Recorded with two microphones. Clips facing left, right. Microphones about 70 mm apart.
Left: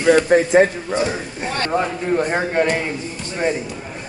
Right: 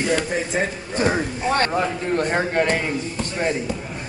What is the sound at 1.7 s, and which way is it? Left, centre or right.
Speech, centre.